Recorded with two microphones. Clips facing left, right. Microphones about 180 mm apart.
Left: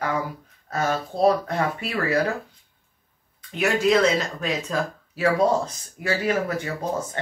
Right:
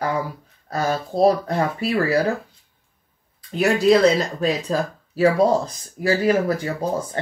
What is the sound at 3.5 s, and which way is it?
Speech, 35° right (ahead or behind).